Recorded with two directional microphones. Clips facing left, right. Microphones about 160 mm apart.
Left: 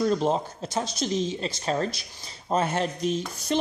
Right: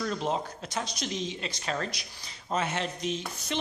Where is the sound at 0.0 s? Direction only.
35° left (ahead or behind).